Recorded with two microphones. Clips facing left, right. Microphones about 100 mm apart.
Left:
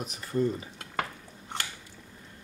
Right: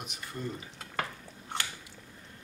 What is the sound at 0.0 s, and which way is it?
Speech, 35° left (ahead or behind).